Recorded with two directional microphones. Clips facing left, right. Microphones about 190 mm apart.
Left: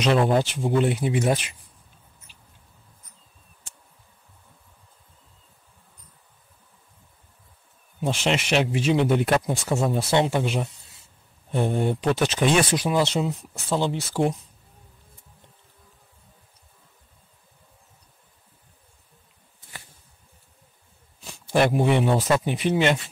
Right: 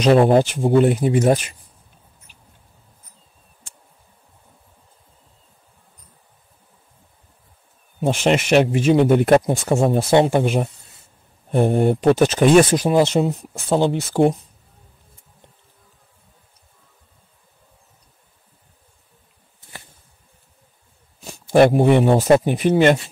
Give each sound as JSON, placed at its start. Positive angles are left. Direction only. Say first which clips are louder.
{"t": 0.0, "sound": "speech", "louder": "right 7 dB", "side_deg": -40}
{"t": 0.5, "sound": "speech", "louder": "right 7 dB", "side_deg": -50}
{"t": 2.3, "sound": "mouse", "louder": "right 2 dB", "side_deg": -50}
{"t": 8.0, "sound": "speech", "louder": "right 6 dB", "side_deg": -50}
{"t": 21.2, "sound": "speech", "louder": "right 8 dB", "side_deg": -45}